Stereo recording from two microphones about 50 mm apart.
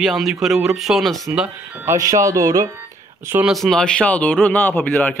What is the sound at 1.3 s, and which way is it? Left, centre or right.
Speech, right.